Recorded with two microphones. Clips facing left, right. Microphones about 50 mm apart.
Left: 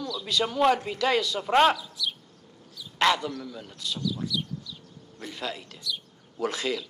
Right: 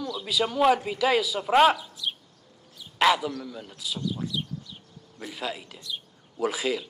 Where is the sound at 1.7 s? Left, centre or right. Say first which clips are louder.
Even; right.